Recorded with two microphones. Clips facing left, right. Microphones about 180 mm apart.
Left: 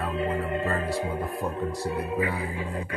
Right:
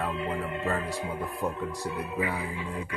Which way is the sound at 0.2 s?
40° left (ahead or behind).